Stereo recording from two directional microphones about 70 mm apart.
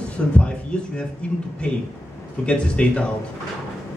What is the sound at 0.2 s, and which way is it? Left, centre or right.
Speech, centre.